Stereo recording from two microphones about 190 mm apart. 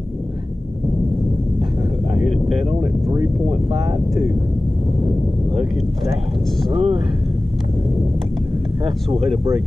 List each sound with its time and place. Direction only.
2.1 s vehicle: centre (ahead or behind)
6.7 s speech: 30° right (ahead or behind)
8.8 s speech: 30° right (ahead or behind)